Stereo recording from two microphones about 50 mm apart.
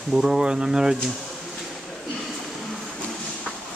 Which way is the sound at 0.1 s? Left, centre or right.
Centre.